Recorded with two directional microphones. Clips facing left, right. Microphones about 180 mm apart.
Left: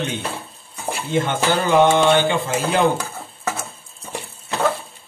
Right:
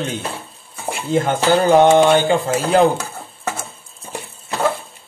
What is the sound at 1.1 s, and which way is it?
Speech, 40° right (ahead or behind).